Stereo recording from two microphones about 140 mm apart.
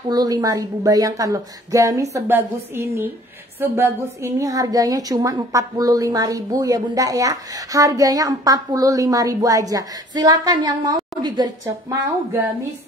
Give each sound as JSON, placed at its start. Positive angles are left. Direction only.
{"t": 0.1, "sound": "a woman's voice", "side_deg": -25}